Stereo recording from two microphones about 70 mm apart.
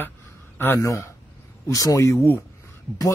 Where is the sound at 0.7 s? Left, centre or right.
Left.